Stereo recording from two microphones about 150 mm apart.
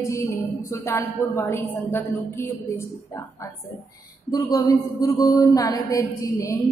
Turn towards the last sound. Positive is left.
turn(degrees=20)  # may be behind; listen again after turning